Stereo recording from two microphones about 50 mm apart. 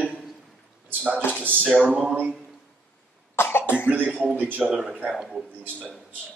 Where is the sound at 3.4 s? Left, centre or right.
Left.